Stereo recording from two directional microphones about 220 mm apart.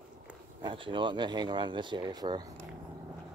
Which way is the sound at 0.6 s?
20° right (ahead or behind).